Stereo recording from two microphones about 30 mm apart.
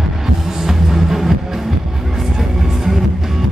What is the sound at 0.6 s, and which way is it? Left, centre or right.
Music, centre.